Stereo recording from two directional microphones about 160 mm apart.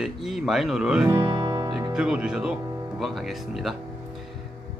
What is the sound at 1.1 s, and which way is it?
Music, 30° right (ahead or behind).